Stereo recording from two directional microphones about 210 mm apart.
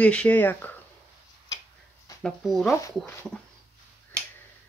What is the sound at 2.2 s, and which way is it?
Speech, centre (ahead or behind).